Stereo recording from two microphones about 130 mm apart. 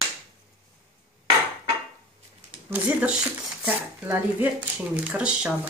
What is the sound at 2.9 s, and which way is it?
Speech, 10° right (ahead or behind).